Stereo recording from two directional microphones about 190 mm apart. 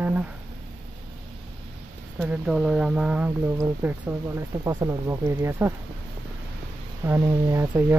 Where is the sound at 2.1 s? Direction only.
5° right (ahead or behind).